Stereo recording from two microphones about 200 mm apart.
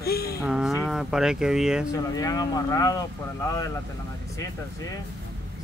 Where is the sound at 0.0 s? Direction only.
50° left (ahead or behind).